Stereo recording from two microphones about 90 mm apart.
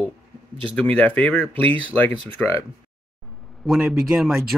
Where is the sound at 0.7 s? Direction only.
15° left (ahead or behind).